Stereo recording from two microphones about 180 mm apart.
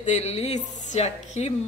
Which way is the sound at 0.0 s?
40° left (ahead or behind).